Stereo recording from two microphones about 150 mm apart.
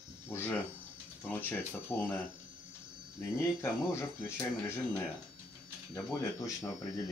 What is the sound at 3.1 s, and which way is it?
Speech, 20° left (ahead or behind).